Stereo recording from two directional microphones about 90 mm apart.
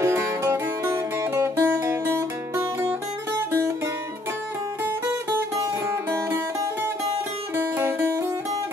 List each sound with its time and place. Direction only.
0.0 s music: 25° right (ahead or behind)
5.6 s music: 30° right (ahead or behind)